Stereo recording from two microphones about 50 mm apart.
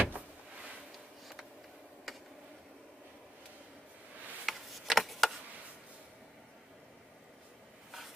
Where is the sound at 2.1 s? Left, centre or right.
Centre.